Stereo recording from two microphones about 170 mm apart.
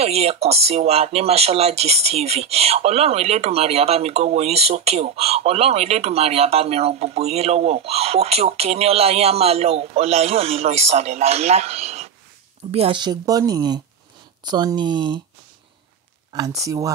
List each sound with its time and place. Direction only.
0.0 s speech: 35° right (ahead or behind)
16.3 s speech: 20° right (ahead or behind)